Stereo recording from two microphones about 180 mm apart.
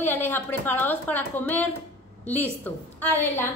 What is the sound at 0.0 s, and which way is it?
A woman's voice, 10° left (ahead or behind).